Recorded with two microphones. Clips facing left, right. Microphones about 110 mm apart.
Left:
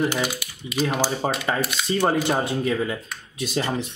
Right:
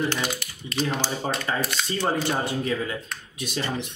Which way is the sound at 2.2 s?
25° left (ahead or behind).